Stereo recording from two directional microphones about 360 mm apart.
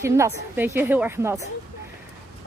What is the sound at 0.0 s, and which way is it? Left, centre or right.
Speech, centre.